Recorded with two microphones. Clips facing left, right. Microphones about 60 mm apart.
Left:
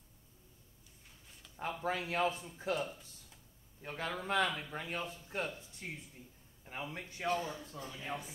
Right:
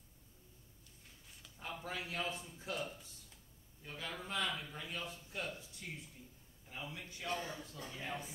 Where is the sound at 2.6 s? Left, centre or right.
Left.